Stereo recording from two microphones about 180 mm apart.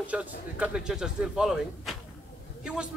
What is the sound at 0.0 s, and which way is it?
A man's voice, 10° right (ahead or behind).